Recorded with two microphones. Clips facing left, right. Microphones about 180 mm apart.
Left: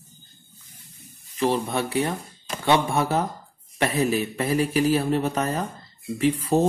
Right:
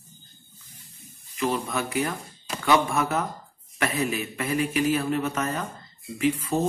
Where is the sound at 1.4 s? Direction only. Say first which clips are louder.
Left 3 dB; 30° left (ahead or behind).